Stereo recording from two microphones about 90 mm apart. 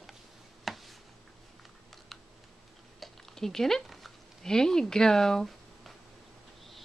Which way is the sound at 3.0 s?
5° left (ahead or behind).